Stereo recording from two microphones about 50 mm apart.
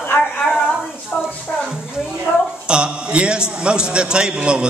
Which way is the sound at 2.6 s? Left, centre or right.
Centre.